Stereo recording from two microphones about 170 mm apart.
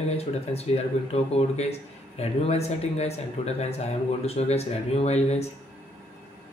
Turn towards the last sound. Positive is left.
turn(degrees=40)  # may be behind; listen again after turning